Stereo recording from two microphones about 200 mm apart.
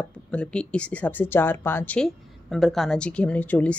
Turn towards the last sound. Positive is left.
turn(degrees=10)  # may be behind; listen again after turning